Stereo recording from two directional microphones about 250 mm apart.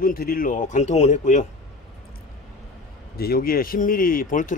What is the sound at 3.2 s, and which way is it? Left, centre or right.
Speech, left.